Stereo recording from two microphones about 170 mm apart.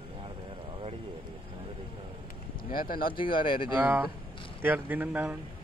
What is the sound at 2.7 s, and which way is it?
Speech, 60° left (ahead or behind).